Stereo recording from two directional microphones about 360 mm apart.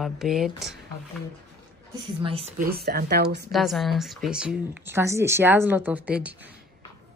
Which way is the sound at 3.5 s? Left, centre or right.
Centre.